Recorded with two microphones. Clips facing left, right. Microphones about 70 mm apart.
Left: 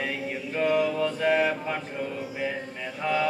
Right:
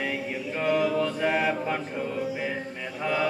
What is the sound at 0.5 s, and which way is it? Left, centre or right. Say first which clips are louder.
Mantra: even; centre.